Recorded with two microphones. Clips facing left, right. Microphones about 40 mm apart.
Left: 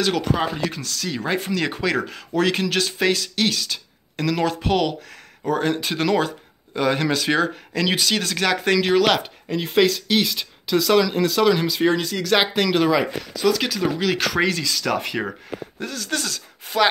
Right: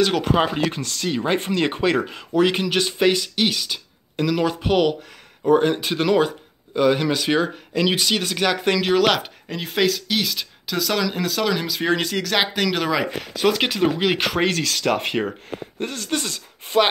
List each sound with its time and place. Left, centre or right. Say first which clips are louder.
0.2 s speech: right 3 dB; right
0.6 s speech: right 3 dB; right
2.3 s speech: right 2 dB; centre
13.2 s speech: right 2 dB; right
13.5 s speech: right 1 dB; right
14.4 s speech: right 1 dB; right